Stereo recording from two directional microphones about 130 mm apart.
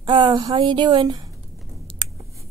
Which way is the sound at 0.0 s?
35° right (ahead or behind).